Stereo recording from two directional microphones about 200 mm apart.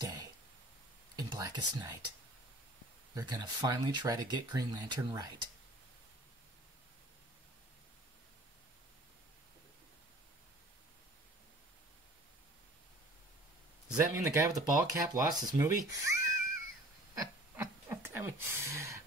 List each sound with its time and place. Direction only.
0.0 s cough: 20° right (ahead or behind)
1.1 s speech: 20° right (ahead or behind)
3.2 s speech: 20° right (ahead or behind)
14.0 s speech: 15° right (ahead or behind)
17.1 s a sound: 15° right (ahead or behind)